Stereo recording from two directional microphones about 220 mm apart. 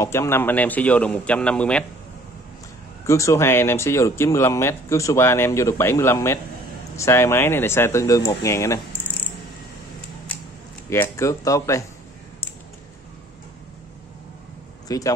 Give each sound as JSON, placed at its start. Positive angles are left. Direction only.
{"t": 0.0, "sound": "speech", "side_deg": 10}
{"t": 3.1, "sound": "speech", "side_deg": 15}
{"t": 10.9, "sound": "speech", "side_deg": 15}
{"t": 14.9, "sound": "speech", "side_deg": 15}